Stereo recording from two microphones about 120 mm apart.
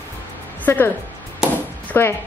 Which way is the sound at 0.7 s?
15° left (ahead or behind).